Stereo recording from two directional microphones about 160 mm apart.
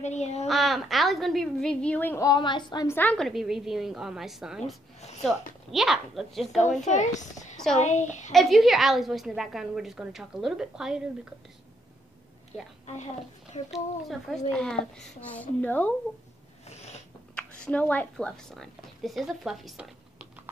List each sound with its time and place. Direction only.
0.0 s a woman's voice: 45° left (ahead or behind)
0.5 s a woman's voice: centre (ahead or behind); by 2.9 s 25° left (ahead or behind)
2.9 s a woman's voice: 10° left (ahead or behind)
6.8 s a woman's voice: 45° left (ahead or behind)
8.3 s a woman's voice: centre (ahead or behind)
12.8 s a woman's voice: 45° left (ahead or behind)
13.7 s a woman's voice: centre (ahead or behind)
16.6 s cat: 45° left (ahead or behind)
17.4 s a woman's voice: 10° left (ahead or behind)